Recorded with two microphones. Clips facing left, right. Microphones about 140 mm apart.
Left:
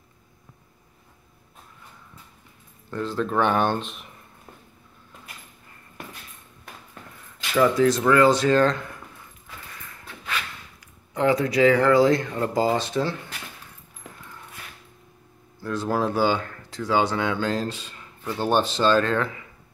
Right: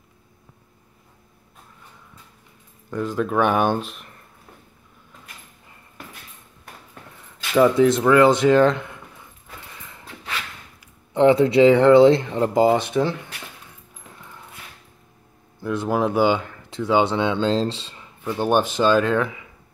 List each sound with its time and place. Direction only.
3.0 s speech: 10° right (ahead or behind)
7.5 s speech: 25° right (ahead or behind)
9.8 s a sound: 20° right (ahead or behind)
11.1 s speech: 25° right (ahead or behind)
15.6 s speech: 20° right (ahead or behind)